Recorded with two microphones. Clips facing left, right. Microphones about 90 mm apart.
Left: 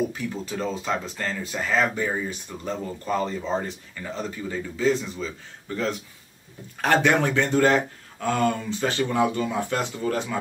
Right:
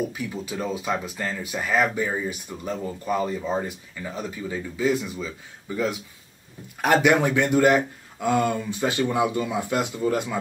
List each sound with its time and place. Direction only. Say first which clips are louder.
0.1 s speech: even; 10° right (ahead or behind)